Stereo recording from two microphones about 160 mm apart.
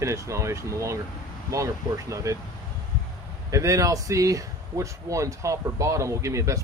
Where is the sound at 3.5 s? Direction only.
20° right (ahead or behind).